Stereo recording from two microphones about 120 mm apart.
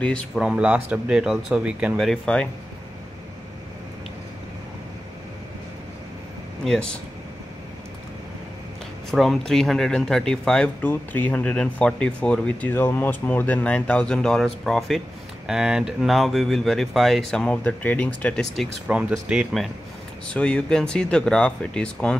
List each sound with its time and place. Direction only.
0.0 s speech: 10° left (ahead or behind)
0.4 s speech: 5° right (ahead or behind)
2.0 s speech: 5° left (ahead or behind)
6.6 s speech: 5° left (ahead or behind)
9.1 s speech: centre (ahead or behind)
18.9 s speech: 10° right (ahead or behind)
20.2 s speech: 10° left (ahead or behind)